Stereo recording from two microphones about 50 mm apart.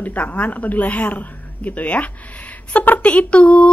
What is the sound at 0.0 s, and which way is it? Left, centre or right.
A woman's voice, left.